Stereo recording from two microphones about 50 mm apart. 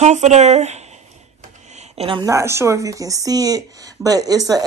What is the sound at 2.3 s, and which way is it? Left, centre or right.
Speech, right.